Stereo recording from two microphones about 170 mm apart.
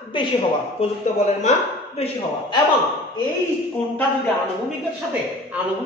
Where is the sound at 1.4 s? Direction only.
40° left (ahead or behind).